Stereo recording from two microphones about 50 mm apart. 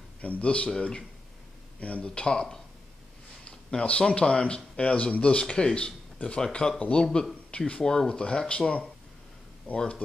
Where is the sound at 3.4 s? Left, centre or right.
Left.